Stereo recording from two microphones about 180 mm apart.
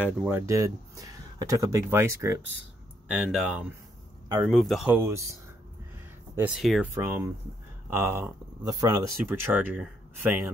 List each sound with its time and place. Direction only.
0.0 s speech: 10° right (ahead or behind)
3.1 s speech: 5° right (ahead or behind)
4.9 s speech: 15° right (ahead or behind)
6.3 s speech: 5° right (ahead or behind)
6.9 s speech: 15° right (ahead or behind)